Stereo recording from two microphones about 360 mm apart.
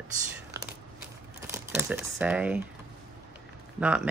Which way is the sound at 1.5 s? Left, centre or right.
Centre.